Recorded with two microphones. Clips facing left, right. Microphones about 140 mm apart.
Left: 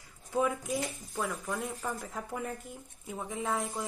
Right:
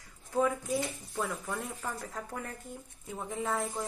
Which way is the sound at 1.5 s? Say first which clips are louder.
Left 2 dB; 10° left (ahead or behind).